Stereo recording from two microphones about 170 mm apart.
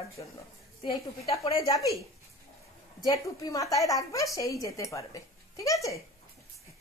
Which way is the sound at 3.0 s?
20° left (ahead or behind).